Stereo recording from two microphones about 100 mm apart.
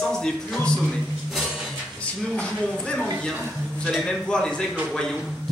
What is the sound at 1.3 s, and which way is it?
Music, 5° right (ahead or behind).